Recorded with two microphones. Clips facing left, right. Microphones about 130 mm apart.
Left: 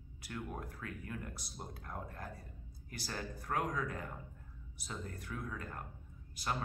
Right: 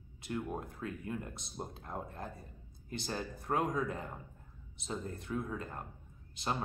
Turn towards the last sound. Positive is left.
turn(degrees=-25)  # may be behind; listen again after turning